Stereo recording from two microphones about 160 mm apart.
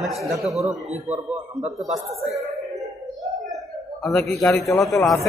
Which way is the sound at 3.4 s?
Centre (ahead or behind).